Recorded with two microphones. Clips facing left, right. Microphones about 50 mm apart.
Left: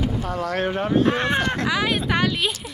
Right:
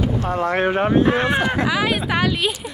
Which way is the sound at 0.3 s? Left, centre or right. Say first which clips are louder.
Right 6 dB; right.